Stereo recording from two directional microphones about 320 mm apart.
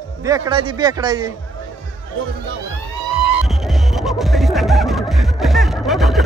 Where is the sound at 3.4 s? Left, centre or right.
Centre.